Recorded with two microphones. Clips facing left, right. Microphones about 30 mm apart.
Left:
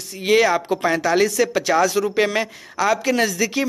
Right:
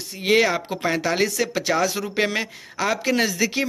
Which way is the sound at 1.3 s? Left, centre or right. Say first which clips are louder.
Left 4 dB; centre.